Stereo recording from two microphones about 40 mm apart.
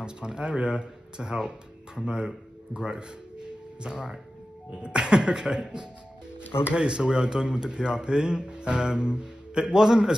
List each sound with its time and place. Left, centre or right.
0.0 s a man's voice: right